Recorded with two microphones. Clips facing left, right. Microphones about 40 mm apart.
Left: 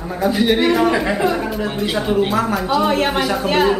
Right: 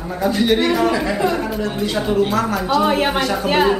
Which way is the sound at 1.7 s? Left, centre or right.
Centre.